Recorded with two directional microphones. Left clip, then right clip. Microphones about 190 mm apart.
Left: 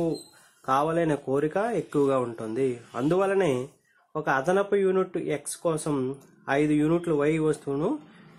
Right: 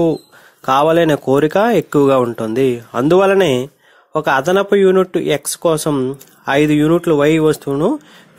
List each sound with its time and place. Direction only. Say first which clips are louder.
0.7 s speech: right 12 dB; 40° right (ahead or behind)